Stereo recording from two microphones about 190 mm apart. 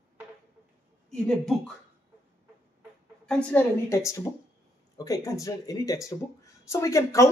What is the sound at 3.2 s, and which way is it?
Speech, 5° left (ahead or behind).